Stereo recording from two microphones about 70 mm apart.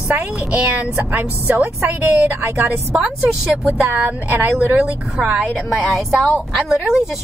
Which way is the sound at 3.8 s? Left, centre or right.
Right.